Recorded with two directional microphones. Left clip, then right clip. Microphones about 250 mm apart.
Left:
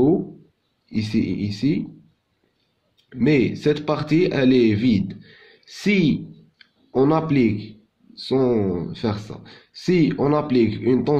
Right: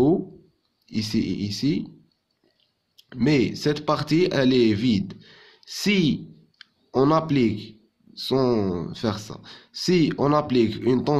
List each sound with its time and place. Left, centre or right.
0.8 s a man's voice: centre
3.1 s a man's voice: centre